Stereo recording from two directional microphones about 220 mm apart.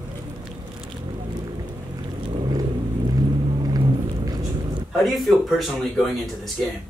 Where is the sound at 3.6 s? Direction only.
15° right (ahead or behind).